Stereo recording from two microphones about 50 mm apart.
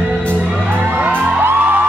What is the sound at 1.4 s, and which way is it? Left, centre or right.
Music, right.